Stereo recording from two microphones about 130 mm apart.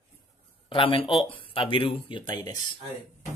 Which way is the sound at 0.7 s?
40° left (ahead or behind).